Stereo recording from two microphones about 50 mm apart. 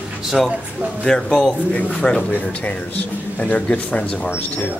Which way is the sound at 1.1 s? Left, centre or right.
Centre.